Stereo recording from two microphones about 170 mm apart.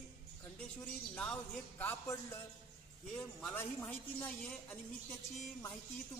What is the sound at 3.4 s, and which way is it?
Speech, 10° left (ahead or behind).